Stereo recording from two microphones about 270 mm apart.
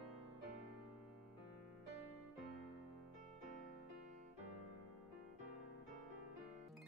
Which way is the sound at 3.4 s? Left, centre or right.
Left.